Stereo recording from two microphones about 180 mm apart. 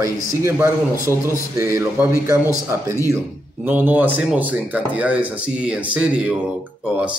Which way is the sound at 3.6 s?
10° right (ahead or behind).